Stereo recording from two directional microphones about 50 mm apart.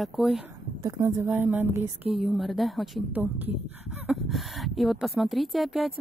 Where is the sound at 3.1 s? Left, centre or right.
Right.